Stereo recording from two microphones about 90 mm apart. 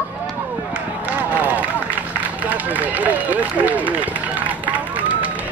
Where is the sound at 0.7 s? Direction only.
15° right (ahead or behind).